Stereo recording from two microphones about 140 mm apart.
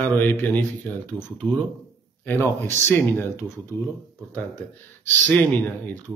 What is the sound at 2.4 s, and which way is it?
Speech, 15° left (ahead or behind).